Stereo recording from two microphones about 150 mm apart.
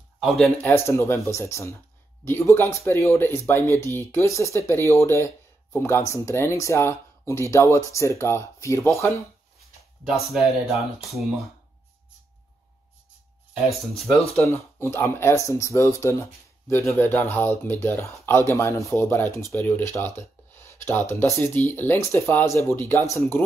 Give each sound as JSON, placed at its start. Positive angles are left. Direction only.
{"t": 0.6, "sound": "speech", "side_deg": 15}
{"t": 13.5, "sound": "speech", "side_deg": 0}
{"t": 14.4, "sound": "speech", "side_deg": 15}